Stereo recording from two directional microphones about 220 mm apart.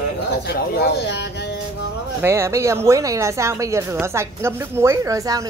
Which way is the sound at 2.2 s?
10° right (ahead or behind).